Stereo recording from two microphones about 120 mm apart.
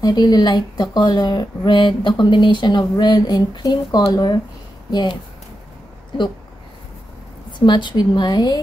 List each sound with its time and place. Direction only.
0.0 s speech: 35° left (ahead or behind)
7.5 s speech: 40° left (ahead or behind)